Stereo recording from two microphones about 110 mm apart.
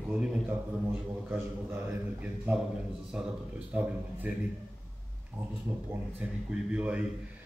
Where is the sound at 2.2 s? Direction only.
15° right (ahead or behind).